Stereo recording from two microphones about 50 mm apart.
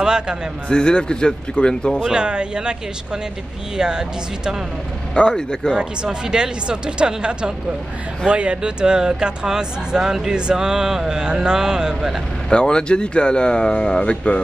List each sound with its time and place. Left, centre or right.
0.0 s a man's voice: centre
0.7 s speech: centre
2.0 s speech: centre
3.7 s speech: centre
5.1 s speech: centre
6.0 s speech: centre
12.4 s speech: centre